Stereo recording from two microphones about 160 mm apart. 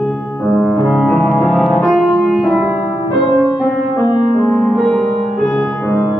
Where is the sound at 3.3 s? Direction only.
20° left (ahead or behind).